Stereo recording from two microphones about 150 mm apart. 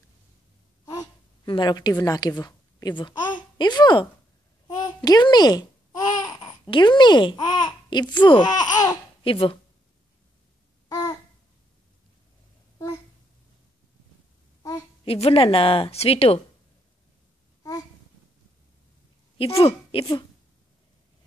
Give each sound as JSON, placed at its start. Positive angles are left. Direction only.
{"t": 0.8, "sound": "a woman's voice", "side_deg": 30}
{"t": 4.7, "sound": "babbling", "side_deg": 25}
{"t": 6.7, "sound": "speech", "side_deg": 30}
{"t": 9.2, "sound": "a woman's voice", "side_deg": 35}
{"t": 10.9, "sound": "babbling", "side_deg": 25}
{"t": 12.7, "sound": "a sound", "side_deg": 20}
{"t": 15.0, "sound": "a woman's voice", "side_deg": 40}
{"t": 19.6, "sound": "a woman's voice", "side_deg": 35}